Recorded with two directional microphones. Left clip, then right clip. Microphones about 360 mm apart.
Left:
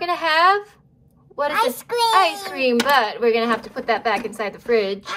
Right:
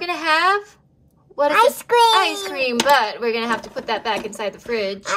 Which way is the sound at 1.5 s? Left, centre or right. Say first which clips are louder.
Right 6 dB; right.